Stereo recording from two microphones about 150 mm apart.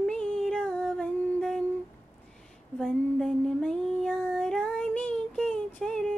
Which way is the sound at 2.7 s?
5° left (ahead or behind).